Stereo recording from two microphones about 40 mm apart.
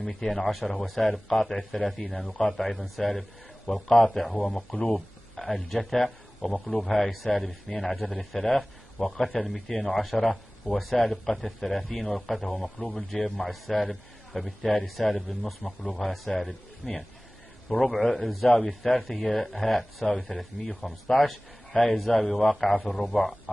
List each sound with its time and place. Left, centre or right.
0.0 s a man's voice: centre
4.5 s speech: centre
4.9 s a man's voice: centre